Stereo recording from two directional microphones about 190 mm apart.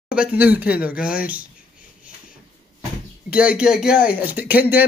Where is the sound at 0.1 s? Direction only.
5° right (ahead or behind).